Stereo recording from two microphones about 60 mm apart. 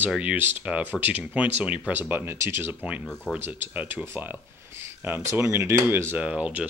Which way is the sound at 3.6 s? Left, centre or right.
Right.